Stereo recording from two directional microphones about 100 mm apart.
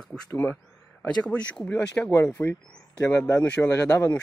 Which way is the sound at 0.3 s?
20° left (ahead or behind).